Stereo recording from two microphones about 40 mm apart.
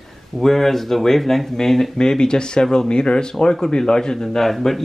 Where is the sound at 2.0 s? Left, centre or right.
Centre.